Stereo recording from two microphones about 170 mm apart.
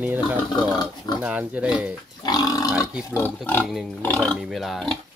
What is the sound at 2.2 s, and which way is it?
Livestock, 25° left (ahead or behind).